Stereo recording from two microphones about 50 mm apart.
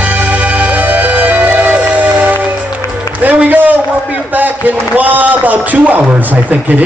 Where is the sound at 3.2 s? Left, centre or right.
Right.